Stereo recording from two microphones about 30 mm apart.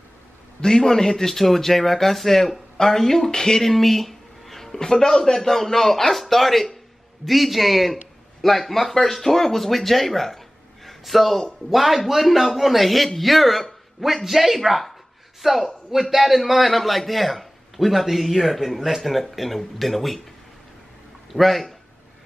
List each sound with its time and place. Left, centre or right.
0.6 s speech: left
3.7 s a sound: centre
4.7 s a man's voice: centre
21.3 s speech: centre